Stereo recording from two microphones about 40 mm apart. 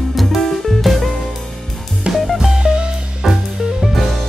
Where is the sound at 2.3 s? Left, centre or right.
Centre.